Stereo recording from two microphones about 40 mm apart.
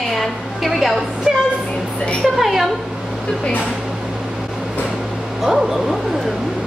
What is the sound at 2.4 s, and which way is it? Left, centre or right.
Speech, centre.